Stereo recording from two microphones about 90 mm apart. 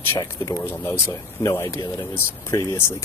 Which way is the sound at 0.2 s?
40° left (ahead or behind).